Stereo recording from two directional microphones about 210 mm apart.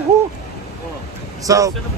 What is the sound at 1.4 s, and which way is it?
Speech, 15° right (ahead or behind).